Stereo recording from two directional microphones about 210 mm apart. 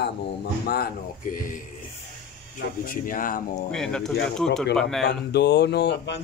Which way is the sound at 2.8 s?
40° left (ahead or behind).